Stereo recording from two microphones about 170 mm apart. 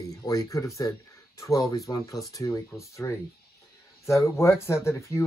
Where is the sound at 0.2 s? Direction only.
20° left (ahead or behind).